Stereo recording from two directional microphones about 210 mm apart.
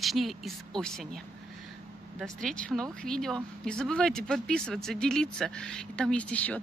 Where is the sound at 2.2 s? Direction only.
5° left (ahead or behind).